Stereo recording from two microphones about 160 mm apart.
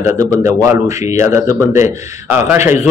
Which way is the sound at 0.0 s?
20° right (ahead or behind).